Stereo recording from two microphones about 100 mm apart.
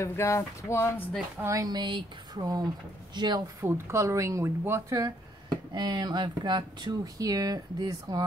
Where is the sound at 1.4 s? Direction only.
35° right (ahead or behind).